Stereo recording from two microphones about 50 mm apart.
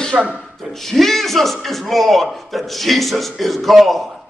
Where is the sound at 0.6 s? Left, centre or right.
Centre.